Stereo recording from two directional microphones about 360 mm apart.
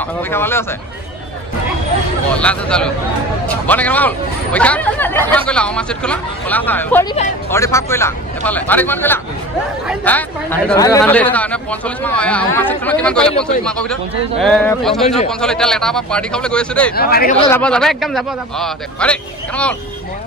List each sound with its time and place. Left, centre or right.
0.3 s speech: centre
2.3 s speech: centre
14.4 s speech: centre
15.0 s speech: centre
15.4 s speech: centre
16.9 s speech: left
17.5 s speech: centre